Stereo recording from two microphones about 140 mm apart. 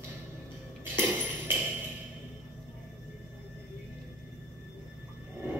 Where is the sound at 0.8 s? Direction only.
15° right (ahead or behind).